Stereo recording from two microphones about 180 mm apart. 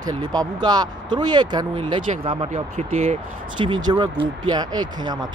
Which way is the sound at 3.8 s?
25° right (ahead or behind).